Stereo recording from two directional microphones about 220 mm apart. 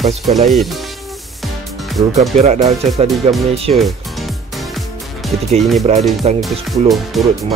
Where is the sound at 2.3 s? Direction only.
30° right (ahead or behind).